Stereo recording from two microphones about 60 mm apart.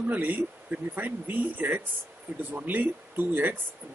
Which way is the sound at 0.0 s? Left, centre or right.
Right.